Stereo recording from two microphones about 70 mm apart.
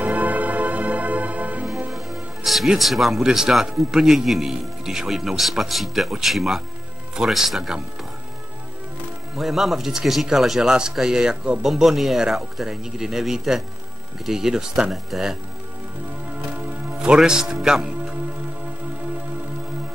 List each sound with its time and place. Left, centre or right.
0.0 s music: right
1.9 s speech: centre
9.4 s speech: centre
11.6 s speech: centre
17.0 s a man's voice: centre